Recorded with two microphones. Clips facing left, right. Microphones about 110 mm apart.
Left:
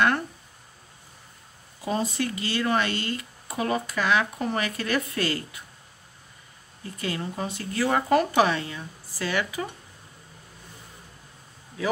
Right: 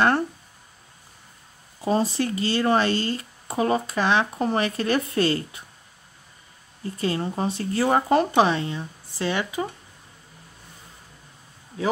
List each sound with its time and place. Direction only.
1.9 s speech: 30° right (ahead or behind)
6.8 s speech: 30° right (ahead or behind)